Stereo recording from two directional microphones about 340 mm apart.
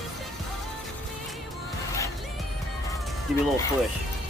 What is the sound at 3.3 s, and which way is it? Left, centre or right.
Music, centre.